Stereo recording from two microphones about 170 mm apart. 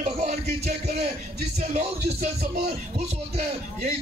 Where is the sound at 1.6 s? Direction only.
40° right (ahead or behind).